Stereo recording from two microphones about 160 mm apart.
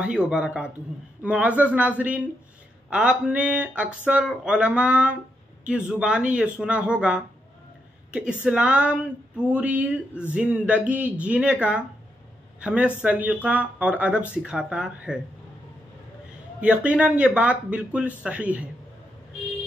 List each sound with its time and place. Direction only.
0.0 s a man's voice: 5° right (ahead or behind)
8.5 s speech: 5° right (ahead or behind)
16.6 s speech: 5° right (ahead or behind)